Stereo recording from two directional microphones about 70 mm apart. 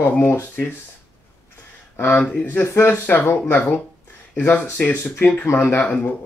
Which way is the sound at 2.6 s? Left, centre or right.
Left.